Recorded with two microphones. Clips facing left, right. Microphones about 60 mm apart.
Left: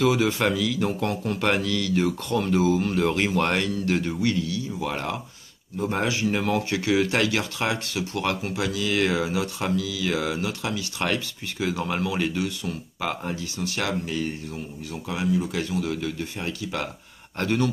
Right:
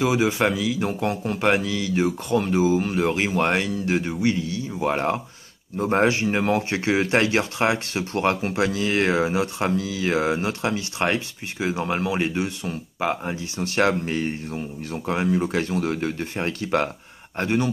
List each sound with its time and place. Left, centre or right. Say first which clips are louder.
0.0 s a man's voice: right 1 dB; centre
13.6 s speech: right 8 dB; right
17.4 s a man's voice: right 1 dB; right